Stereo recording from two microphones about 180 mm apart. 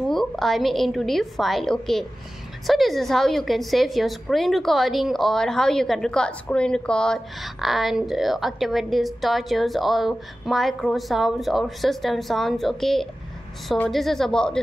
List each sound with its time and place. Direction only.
0.1 s a woman's voice: centre (ahead or behind)